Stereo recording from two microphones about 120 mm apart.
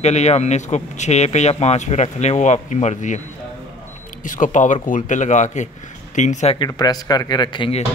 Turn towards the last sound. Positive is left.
turn(degrees=40)  # may be behind; listen again after turning